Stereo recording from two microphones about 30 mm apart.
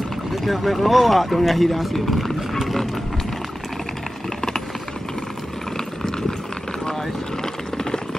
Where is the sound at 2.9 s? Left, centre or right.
Centre.